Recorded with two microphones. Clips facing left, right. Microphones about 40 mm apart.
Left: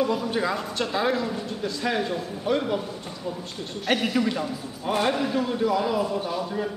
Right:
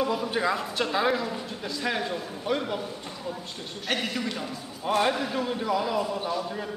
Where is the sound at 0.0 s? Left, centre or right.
Centre.